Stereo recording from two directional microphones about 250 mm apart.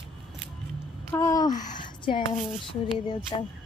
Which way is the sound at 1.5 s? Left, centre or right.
Left.